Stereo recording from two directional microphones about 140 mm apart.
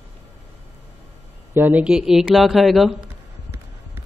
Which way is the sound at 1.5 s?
15° right (ahead or behind).